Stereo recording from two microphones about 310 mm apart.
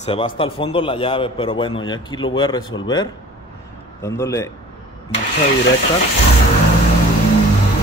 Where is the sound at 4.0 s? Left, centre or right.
Centre.